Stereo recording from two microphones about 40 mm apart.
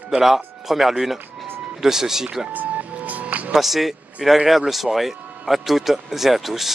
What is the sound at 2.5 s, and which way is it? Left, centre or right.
Music, right.